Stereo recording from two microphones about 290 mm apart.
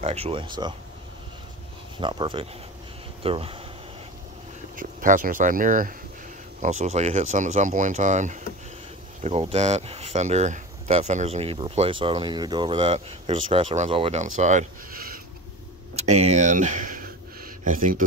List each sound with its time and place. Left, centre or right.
0.0 s speech: right
2.0 s speech: centre
4.7 s speech: right